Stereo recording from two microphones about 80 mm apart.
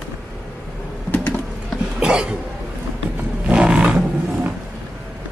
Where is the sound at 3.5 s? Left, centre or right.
Centre.